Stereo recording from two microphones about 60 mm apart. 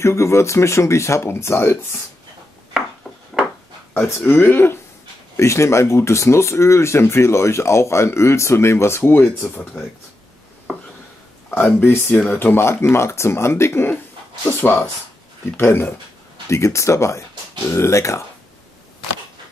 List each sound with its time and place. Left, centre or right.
0.0 s speech: left
4.0 s speech: left
5.4 s speech: left
11.5 s speech: left
14.4 s speech: left
16.4 s speech: left